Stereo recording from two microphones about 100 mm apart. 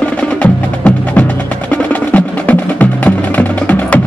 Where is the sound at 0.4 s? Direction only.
10° left (ahead or behind).